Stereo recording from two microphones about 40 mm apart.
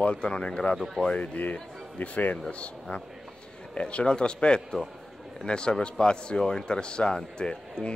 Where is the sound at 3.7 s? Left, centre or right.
Left.